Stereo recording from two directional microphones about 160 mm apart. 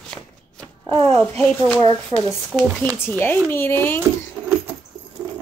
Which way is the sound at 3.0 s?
15° left (ahead or behind).